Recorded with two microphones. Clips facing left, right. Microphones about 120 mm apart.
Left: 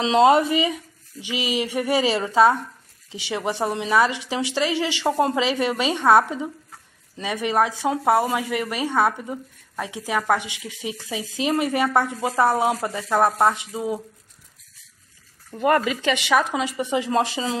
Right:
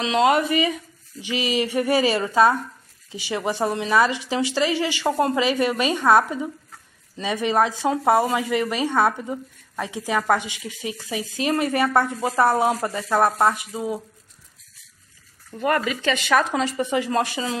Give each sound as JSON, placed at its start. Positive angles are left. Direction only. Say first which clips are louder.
{"t": 0.0, "sound": "speech", "louder": "left 3 dB", "side_deg": 25}
{"t": 7.2, "sound": "speech", "louder": "right 1 dB", "side_deg": 10}
{"t": 15.6, "sound": "speech", "louder": "left 2 dB", "side_deg": 25}
{"t": 16.9, "sound": "speech", "louder": "left 4 dB", "side_deg": 25}